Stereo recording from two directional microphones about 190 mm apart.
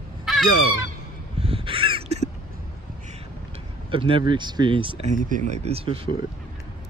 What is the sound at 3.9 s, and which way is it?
Speech, 30° right (ahead or behind).